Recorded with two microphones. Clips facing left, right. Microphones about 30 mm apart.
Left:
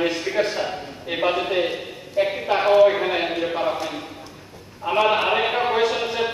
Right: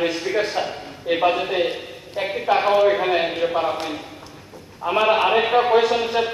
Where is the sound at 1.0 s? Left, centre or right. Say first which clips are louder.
Right 3 dB; centre.